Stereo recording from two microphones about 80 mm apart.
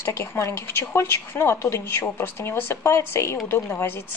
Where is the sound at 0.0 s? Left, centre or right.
Left.